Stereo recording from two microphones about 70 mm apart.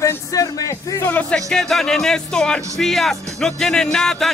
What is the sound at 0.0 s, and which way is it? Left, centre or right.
Music, left.